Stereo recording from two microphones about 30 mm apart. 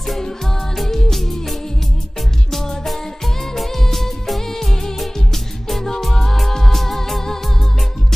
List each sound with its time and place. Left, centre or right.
0.8 s music: centre
2.6 s music: centre
3.5 s music of bollywood: centre
6.1 s music: centre